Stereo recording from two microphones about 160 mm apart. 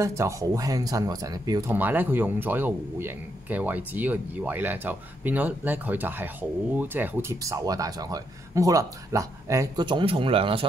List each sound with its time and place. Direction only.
0.0 s speech: 20° right (ahead or behind)
1.7 s speech: 10° right (ahead or behind)
9.8 s speech: 30° right (ahead or behind)